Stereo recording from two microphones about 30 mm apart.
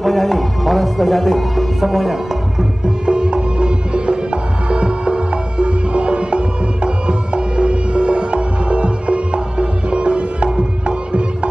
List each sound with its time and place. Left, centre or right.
0.0 s music: centre
3.1 s music: right